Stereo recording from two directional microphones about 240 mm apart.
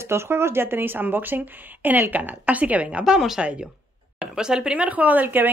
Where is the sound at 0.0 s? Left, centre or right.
Centre.